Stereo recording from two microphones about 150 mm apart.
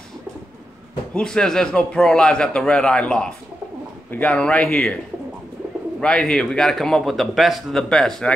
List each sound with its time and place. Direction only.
1.1 s a man's voice: 5° left (ahead or behind)
5.9 s a man's voice: 5° left (ahead or behind)